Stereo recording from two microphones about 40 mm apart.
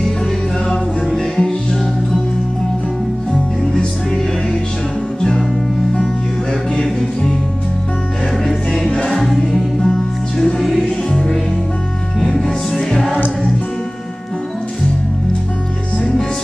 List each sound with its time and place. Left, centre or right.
0.7 s music: centre
3.6 s music: centre
6.8 s music: centre
8.7 s music: centre
12.2 s music: centre